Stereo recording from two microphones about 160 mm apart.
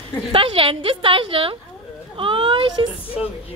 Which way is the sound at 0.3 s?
35° right (ahead or behind).